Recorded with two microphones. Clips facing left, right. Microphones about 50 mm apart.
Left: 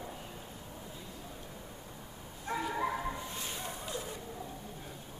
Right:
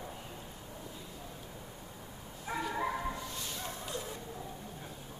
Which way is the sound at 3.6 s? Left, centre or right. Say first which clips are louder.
Even; centre.